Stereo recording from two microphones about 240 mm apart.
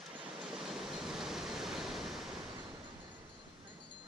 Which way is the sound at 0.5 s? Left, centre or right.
Centre.